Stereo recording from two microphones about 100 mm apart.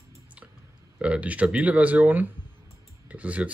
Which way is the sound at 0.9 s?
10° right (ahead or behind).